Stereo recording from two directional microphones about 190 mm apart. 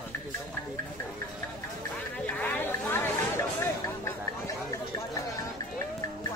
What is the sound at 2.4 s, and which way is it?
Chatter, 10° left (ahead or behind).